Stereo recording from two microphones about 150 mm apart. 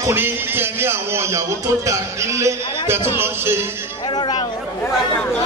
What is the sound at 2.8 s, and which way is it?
Speech, 15° right (ahead or behind).